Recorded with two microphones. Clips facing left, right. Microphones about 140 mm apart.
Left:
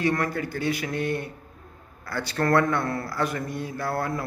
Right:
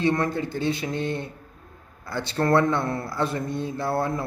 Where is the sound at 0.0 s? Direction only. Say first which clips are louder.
Right 2 dB; 25° right (ahead or behind).